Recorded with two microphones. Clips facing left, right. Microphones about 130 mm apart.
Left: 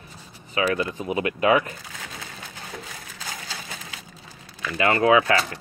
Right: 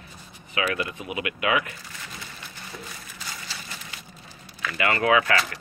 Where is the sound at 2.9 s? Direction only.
90° left.